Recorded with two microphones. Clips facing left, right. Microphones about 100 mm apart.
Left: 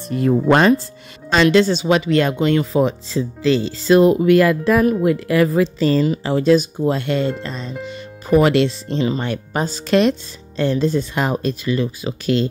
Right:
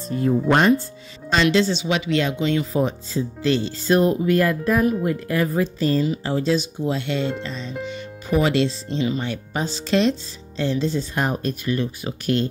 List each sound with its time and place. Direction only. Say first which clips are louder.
0.0 s speech: left 3 dB; 85° left
1.3 s speech: left 5 dB; 60° left (ahead or behind)
2.6 s speech: left 5 dB; 90° left
6.2 s speech: left 5 dB; 70° left (ahead or behind)
6.5 s speech: left 7 dB; 50° left (ahead or behind)
7.9 s music: left 9 dB; 40° left (ahead or behind)
8.4 s speech: left 5 dB; 65° left (ahead or behind)
9.2 s speech: left 4 dB; 55° left (ahead or behind)
11.1 s speech: left 3 dB; 90° left